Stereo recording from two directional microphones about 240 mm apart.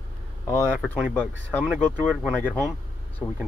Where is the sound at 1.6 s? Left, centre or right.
Centre.